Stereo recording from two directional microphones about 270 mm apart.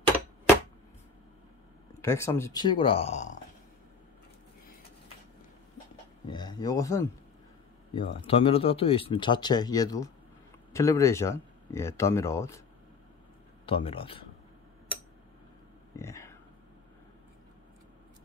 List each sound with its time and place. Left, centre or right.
2.0 s speech: centre
6.2 s a sound: centre
7.9 s speech: centre
13.7 s speech: centre
16.0 s speech: centre